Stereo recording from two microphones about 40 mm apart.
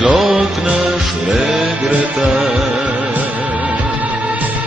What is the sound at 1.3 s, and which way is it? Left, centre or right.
Music, right.